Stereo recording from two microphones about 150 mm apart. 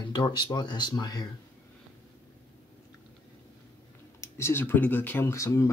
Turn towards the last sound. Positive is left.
turn(degrees=20)  # may be behind; listen again after turning